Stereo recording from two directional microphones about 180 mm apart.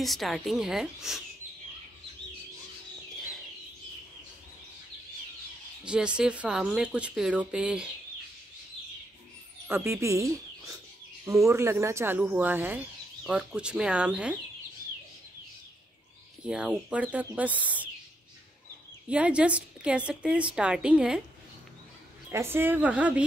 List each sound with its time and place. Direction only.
0.0 s speech: centre (ahead or behind)
5.9 s speech: 5° right (ahead or behind)
9.7 s a woman's voice: 15° right (ahead or behind)
16.4 s a woman's voice: 5° right (ahead or behind)
19.0 s a woman's voice: 5° right (ahead or behind)
22.3 s a woman's voice: 15° right (ahead or behind)